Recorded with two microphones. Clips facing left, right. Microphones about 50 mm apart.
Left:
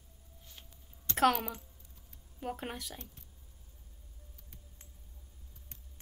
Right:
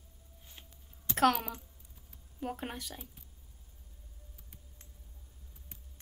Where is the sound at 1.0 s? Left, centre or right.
Centre.